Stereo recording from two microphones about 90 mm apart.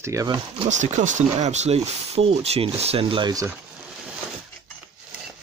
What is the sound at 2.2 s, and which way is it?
Speech, 90° right.